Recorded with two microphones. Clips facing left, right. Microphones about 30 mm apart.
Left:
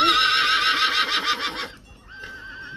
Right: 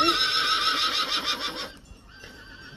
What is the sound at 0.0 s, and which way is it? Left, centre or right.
Neigh, left.